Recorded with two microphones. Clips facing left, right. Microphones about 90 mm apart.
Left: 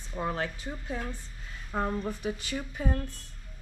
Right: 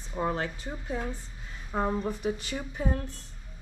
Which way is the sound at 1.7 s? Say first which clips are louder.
Right 2 dB; 10° right (ahead or behind).